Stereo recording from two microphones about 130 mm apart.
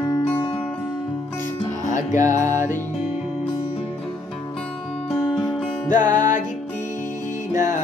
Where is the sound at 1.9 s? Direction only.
75° left (ahead or behind).